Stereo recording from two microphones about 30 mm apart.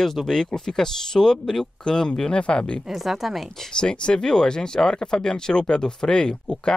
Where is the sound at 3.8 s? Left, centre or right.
Left.